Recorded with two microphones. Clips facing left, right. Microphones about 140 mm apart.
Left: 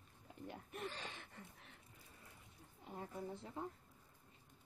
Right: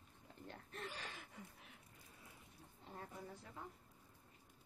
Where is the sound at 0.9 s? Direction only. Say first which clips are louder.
Left 1 dB; 5° right (ahead or behind).